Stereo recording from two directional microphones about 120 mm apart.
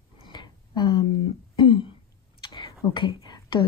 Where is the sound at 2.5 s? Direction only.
40° left (ahead or behind).